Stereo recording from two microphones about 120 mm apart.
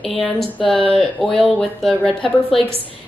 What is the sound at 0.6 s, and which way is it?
Speech, 50° left (ahead or behind).